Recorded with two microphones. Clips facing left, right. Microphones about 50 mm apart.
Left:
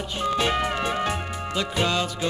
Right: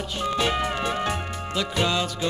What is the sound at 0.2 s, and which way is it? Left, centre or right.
Music, centre.